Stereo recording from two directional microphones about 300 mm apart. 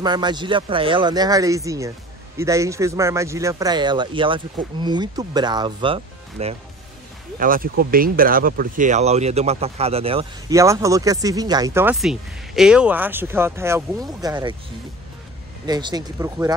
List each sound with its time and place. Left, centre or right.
0.0 s speech: centre
7.3 s speech: right; by 14.5 s centre
15.6 s speech: centre